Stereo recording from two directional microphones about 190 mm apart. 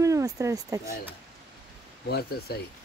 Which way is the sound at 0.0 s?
15° right (ahead or behind).